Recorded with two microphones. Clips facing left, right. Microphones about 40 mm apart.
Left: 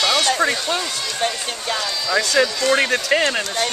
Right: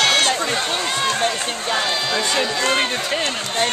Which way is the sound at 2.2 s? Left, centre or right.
Right.